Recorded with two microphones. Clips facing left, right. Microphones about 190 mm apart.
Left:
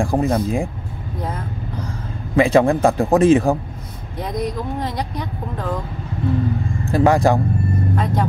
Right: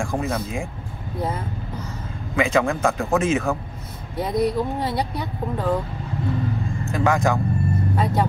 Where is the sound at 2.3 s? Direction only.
35° left (ahead or behind).